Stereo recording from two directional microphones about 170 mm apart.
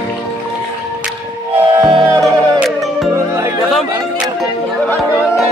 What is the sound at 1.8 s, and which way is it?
Music, 20° right (ahead or behind).